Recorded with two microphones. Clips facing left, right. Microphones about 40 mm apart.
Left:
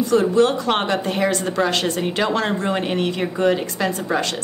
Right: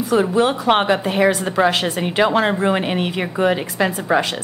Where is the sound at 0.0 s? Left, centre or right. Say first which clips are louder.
Even; centre.